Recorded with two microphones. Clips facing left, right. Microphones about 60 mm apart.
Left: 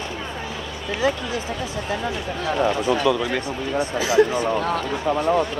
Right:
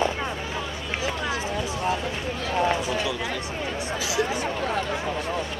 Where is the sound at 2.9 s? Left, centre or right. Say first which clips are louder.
Left 7 dB; left.